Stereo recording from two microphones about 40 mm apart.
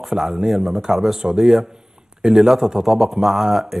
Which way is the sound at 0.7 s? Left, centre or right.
Centre.